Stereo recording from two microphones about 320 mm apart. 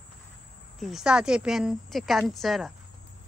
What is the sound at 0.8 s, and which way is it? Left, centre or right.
A woman's voice, centre.